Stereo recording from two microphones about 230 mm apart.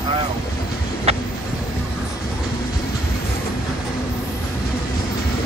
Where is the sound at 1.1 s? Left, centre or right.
Right.